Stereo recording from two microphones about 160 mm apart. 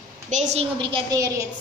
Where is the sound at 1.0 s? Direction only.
20° right (ahead or behind).